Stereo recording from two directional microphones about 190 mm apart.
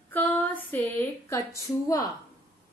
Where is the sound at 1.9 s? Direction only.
20° left (ahead or behind).